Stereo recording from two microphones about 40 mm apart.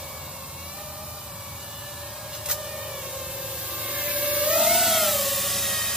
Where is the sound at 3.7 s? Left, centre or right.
Right.